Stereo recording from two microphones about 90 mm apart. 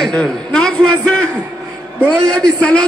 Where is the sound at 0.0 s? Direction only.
10° left (ahead or behind).